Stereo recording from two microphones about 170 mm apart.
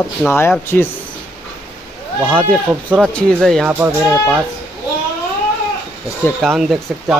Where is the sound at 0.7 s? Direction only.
5° left (ahead or behind).